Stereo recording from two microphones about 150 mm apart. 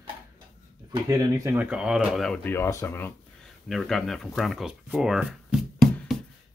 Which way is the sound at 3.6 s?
Centre (ahead or behind).